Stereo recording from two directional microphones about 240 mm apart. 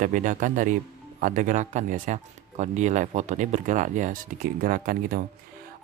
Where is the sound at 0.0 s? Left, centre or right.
Right.